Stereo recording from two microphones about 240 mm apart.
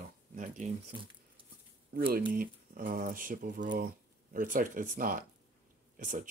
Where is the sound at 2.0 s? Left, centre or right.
Right.